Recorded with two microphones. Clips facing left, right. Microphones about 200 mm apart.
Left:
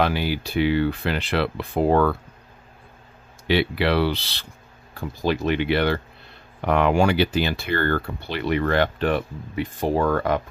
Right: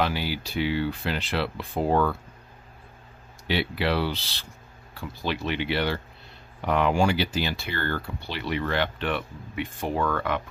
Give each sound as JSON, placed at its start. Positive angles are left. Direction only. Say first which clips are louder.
{"t": 0.0, "sound": "speech", "louder": "left 4 dB", "side_deg": 55}
{"t": 3.4, "sound": "speech", "louder": "left 5 dB", "side_deg": 70}
{"t": 4.9, "sound": "speech", "louder": "left 7 dB", "side_deg": 45}